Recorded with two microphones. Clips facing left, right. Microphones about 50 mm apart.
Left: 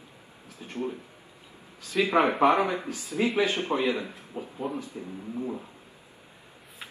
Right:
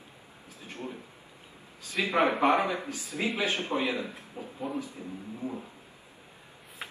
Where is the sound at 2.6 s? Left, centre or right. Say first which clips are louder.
Left 3 dB; left.